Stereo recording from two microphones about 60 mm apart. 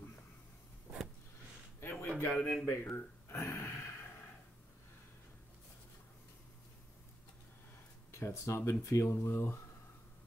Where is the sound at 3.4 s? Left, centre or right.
Left.